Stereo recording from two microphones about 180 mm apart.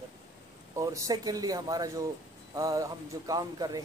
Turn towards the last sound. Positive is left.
turn(degrees=-20)  # may be behind; listen again after turning